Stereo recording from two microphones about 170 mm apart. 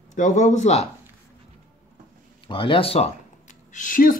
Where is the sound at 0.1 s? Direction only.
45° left (ahead or behind).